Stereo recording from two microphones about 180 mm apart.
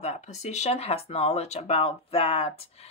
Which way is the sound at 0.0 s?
40° left (ahead or behind).